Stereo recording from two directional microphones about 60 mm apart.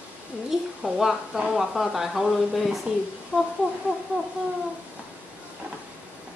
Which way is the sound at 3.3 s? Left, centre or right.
Right.